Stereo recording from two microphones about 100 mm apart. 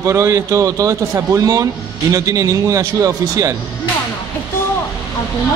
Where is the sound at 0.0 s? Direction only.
30° right (ahead or behind).